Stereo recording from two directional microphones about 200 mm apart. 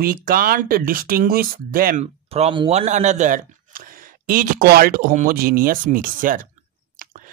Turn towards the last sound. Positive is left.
turn(degrees=-45)  # may be behind; listen again after turning